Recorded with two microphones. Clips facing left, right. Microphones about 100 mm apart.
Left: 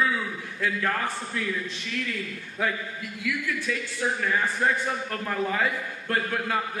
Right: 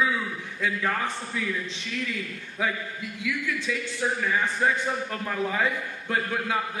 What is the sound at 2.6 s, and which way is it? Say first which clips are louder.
A man's voice: even; 10° right (ahead or behind).